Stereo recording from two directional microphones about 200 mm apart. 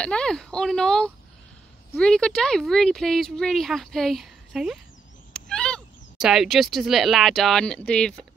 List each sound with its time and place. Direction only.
0.0 s speech: 5° left (ahead or behind)